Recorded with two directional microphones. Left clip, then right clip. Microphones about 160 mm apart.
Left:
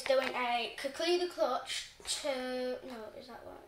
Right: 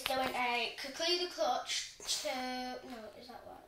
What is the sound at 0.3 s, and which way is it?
Speech, 30° left (ahead or behind).